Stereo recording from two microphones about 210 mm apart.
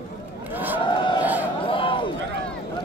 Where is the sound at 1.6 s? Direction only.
25° left (ahead or behind).